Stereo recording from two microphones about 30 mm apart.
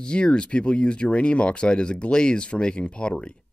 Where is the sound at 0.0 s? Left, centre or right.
Left.